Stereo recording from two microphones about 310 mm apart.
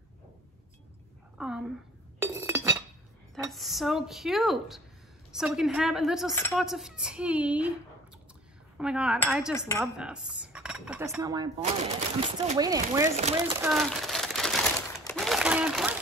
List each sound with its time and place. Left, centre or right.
1.4 s cutlery: centre
2.1 s chink: centre
3.4 s cutlery: centre
8.7 s cutlery: centre
12.4 s speech: centre
13.1 s speech: right
13.6 s crumpling: centre
15.0 s a sound: centre